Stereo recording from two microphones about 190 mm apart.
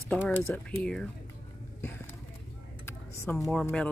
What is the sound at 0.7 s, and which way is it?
Speech, 5° left (ahead or behind).